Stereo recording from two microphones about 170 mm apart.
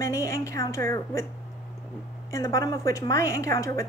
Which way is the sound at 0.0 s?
20° left (ahead or behind).